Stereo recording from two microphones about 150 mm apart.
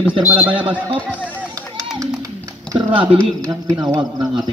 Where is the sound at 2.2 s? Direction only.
25° right (ahead or behind).